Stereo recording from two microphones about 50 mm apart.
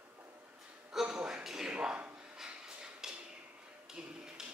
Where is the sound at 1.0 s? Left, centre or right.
Centre.